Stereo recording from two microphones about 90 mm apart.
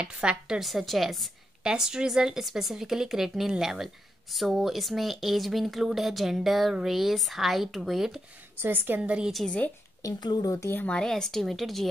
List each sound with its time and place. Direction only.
0.0 s a woman's voice: 10° right (ahead or behind)
8.5 s a woman's voice: 25° right (ahead or behind)
9.3 s a woman's voice: centre (ahead or behind)
10.0 s speech: 40° left (ahead or behind)
10.8 s a woman's voice: 10° left (ahead or behind)